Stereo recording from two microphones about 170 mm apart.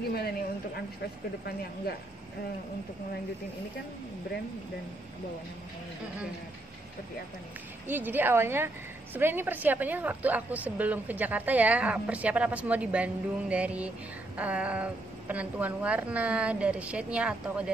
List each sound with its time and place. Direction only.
0.1 s a woman's voice: 70° left (ahead or behind)
7.9 s a woman's voice: 10° right (ahead or behind)